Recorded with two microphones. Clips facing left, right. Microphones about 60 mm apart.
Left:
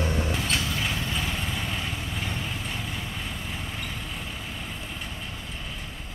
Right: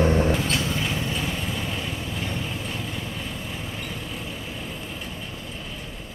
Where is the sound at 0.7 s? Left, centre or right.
Centre.